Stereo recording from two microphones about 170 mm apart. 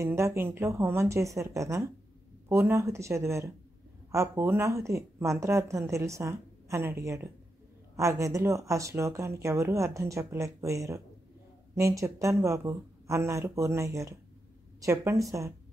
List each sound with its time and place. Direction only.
0.0 s a woman's voice: 15° right (ahead or behind)